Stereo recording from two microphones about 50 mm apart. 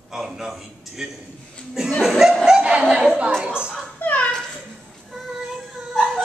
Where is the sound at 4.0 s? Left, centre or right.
Left.